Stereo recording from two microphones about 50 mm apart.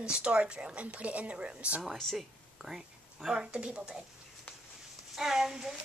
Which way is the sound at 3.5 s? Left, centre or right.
Right.